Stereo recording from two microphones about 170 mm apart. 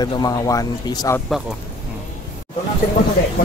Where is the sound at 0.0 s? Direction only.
20° left (ahead or behind).